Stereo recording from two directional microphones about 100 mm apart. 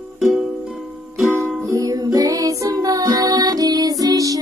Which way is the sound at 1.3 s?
25° right (ahead or behind).